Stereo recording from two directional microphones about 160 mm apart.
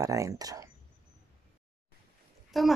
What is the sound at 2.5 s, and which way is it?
Speech, centre (ahead or behind).